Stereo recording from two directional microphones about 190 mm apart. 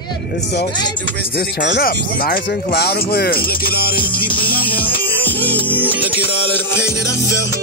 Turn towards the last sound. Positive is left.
turn(degrees=-10)  # may be behind; listen again after turning